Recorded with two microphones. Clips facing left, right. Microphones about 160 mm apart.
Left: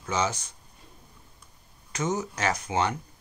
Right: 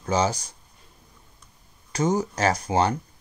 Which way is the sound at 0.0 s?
35° right (ahead or behind).